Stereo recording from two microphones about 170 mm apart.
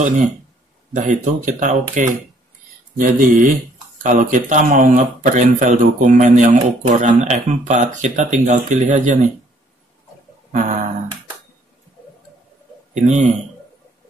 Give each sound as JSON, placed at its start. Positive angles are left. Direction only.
{"t": 0.9, "sound": "speech", "side_deg": -45}
{"t": 10.5, "sound": "a sound", "side_deg": -45}
{"t": 12.9, "sound": "speech", "side_deg": -45}